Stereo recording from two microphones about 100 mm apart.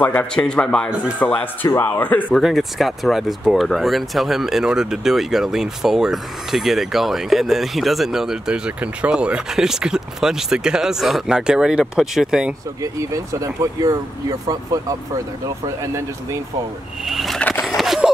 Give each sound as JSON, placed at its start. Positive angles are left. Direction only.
{"t": 0.0, "sound": "speech", "side_deg": 15}
{"t": 2.3, "sound": "speech", "side_deg": 0}
{"t": 12.8, "sound": "speech", "side_deg": -35}
{"t": 17.0, "sound": "speech", "side_deg": 0}
{"t": 17.4, "sound": "a sound", "side_deg": 15}
{"t": 17.6, "sound": "a sound", "side_deg": 0}